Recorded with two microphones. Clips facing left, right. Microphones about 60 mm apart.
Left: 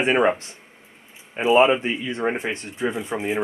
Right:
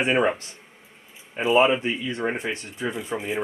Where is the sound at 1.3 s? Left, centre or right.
Left.